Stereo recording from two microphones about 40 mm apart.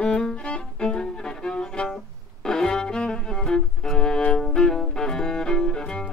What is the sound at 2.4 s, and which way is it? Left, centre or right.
Cello, centre.